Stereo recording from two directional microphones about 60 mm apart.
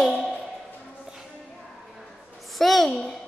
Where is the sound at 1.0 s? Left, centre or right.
Centre.